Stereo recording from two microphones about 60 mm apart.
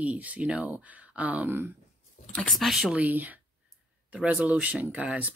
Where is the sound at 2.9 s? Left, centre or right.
Right.